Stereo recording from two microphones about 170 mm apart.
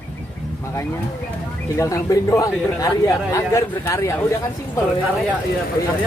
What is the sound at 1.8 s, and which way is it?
Speech, 20° left (ahead or behind).